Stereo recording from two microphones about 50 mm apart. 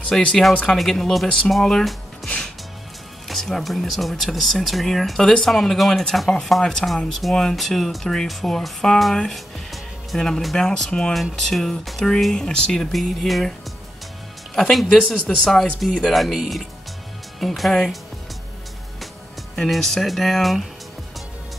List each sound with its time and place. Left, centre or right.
0.1 s speech: centre
3.3 s speech: centre
12.9 s speech: centre
14.5 s speech: centre
19.5 s speech: centre